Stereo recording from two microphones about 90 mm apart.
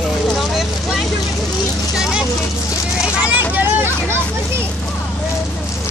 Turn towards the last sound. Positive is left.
turn(degrees=-25)  # may be behind; listen again after turning